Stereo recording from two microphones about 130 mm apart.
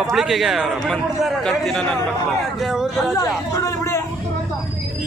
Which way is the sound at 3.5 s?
25° left (ahead or behind).